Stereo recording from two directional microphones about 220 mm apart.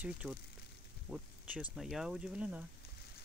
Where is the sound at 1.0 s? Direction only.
5° right (ahead or behind).